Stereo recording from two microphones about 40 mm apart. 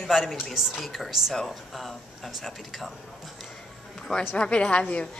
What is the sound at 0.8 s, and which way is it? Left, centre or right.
Speech, centre.